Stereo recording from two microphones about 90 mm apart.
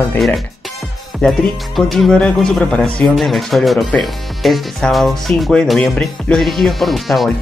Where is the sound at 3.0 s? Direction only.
Centre (ahead or behind).